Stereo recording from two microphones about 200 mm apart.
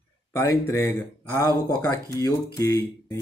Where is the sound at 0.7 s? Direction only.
15° left (ahead or behind).